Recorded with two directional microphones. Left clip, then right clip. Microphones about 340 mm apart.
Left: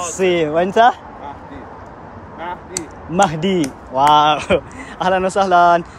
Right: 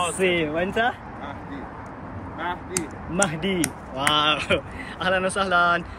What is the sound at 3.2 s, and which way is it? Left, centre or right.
Speech, centre.